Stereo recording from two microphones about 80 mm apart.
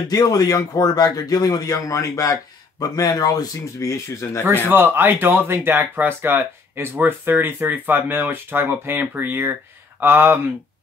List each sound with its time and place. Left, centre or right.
0.1 s speech: left
2.8 s speech: left
4.6 s speech: right